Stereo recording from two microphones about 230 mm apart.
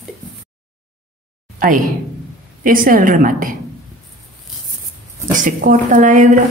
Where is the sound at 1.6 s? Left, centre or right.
Right.